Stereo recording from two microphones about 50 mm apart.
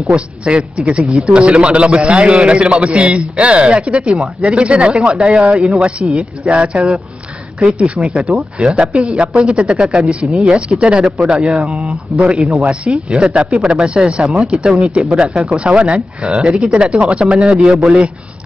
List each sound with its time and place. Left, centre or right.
0.1 s a man's voice: right
11.5 s speech: centre
11.8 s a man's voice: right